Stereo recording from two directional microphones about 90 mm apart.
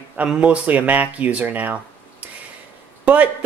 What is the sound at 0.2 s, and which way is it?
Speech, 15° right (ahead or behind).